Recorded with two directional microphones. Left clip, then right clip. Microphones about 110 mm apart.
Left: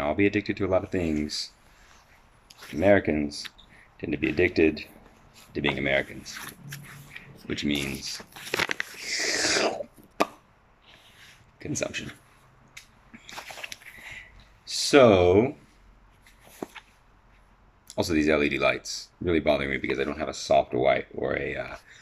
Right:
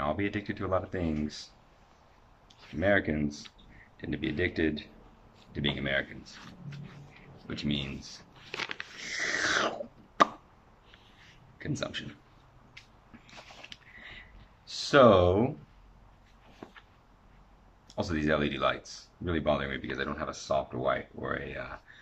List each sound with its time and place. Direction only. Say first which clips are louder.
0.0 s speech: left 7 dB; 15° left (ahead or behind)
7.4 s speech: left 6 dB; 5° left (ahead or behind)
9.0 s a sound: left 2 dB; 10° left (ahead or behind)
11.5 s speech: left 5 dB; 10° left (ahead or behind)
14.6 s speech: left 3 dB; 5° left (ahead or behind)
16.6 s a sound: left 11 dB; 65° left (ahead or behind)
17.8 s speech: left 6 dB; 10° left (ahead or behind)
20.9 s speech: left 7 dB; 40° left (ahead or behind)
21.5 s speech: left 7 dB; 10° left (ahead or behind)